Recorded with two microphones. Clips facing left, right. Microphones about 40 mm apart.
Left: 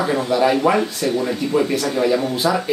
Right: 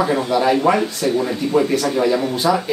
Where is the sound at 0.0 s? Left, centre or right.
Centre.